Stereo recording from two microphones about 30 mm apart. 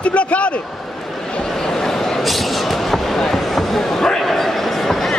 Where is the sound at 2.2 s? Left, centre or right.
Centre.